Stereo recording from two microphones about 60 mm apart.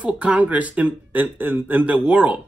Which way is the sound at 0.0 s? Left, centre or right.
Right.